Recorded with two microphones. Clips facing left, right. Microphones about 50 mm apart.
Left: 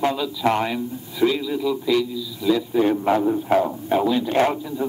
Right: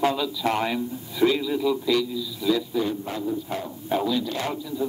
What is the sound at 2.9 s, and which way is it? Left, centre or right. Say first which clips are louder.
Speech: left 9 dB; left.